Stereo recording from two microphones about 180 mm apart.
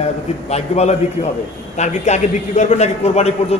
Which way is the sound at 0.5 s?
35° left (ahead or behind).